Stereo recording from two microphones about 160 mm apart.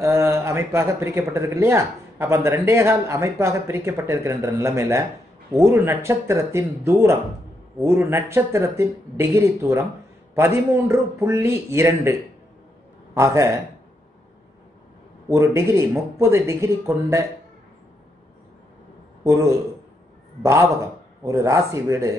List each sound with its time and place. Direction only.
0.0 s speech: 15° right (ahead or behind)
15.2 s speech: 20° right (ahead or behind)
19.2 s a man's voice: 20° right (ahead or behind)